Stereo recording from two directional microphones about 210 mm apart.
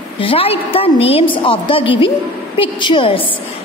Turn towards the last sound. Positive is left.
turn(degrees=25)  # may be behind; listen again after turning